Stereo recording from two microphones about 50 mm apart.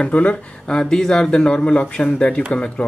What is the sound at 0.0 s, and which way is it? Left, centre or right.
Speech, left.